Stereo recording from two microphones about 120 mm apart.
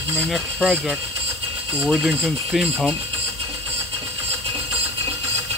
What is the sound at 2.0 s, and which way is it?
Speech, 5° right (ahead or behind).